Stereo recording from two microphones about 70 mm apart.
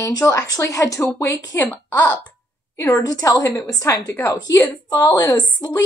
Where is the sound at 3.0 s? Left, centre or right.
Left.